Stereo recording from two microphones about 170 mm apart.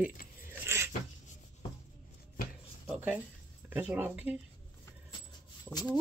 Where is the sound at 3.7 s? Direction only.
10° right (ahead or behind).